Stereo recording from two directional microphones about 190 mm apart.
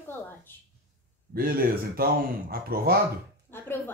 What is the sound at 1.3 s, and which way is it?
Speech, 50° right (ahead or behind).